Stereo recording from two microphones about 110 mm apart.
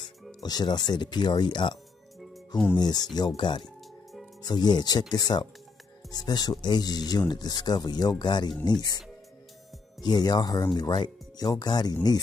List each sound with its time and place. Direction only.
0.4 s speech: 40° left (ahead or behind)
9.9 s speech: 40° left (ahead or behind)